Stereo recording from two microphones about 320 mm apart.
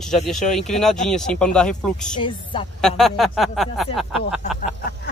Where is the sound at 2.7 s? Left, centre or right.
Centre.